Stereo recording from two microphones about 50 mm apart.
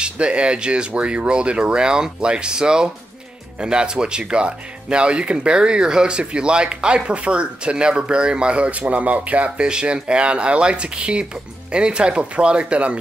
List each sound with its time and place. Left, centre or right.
0.0 s speech: right